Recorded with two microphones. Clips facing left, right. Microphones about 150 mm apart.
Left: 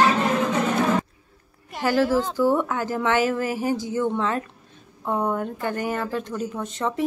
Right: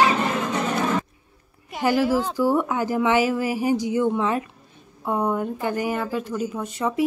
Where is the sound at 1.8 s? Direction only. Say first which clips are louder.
Even; 15° right (ahead or behind).